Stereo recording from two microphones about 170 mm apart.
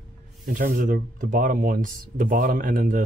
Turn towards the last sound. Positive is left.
turn(degrees=-55)  # may be behind; listen again after turning